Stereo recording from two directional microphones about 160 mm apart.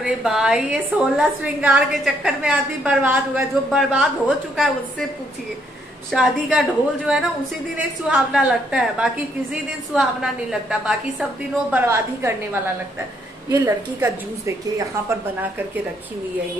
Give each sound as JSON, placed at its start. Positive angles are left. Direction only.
{"t": 0.0, "sound": "a woman's voice", "side_deg": -5}
{"t": 6.1, "sound": "a woman's voice", "side_deg": -5}
{"t": 11.7, "sound": "a woman's voice", "side_deg": -15}
{"t": 13.5, "sound": "a woman's voice", "side_deg": -15}